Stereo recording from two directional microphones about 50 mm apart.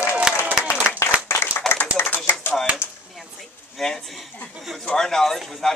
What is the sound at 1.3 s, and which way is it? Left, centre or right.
Clapping, left.